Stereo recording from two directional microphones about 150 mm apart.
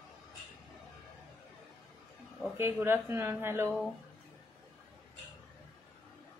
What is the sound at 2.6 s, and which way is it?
Speech, 15° right (ahead or behind).